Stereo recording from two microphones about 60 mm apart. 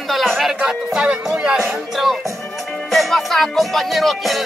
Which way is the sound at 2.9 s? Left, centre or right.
Centre.